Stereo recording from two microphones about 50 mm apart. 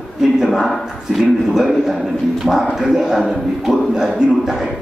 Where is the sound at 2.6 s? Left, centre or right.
Centre.